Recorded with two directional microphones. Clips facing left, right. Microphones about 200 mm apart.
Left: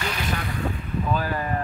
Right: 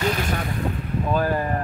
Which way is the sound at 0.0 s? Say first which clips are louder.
Right 6 dB; 40° right (ahead or behind).